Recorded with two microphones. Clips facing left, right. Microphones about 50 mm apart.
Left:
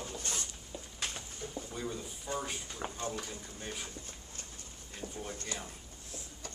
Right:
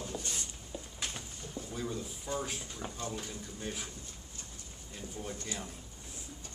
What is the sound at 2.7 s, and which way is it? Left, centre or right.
Speech, left.